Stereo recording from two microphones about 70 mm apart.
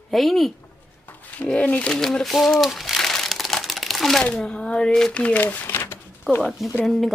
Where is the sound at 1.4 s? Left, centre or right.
Centre.